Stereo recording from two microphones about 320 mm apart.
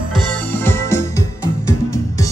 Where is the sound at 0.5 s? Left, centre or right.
Centre.